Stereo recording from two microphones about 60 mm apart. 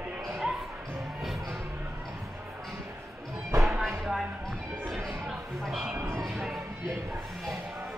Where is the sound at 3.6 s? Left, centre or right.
Centre.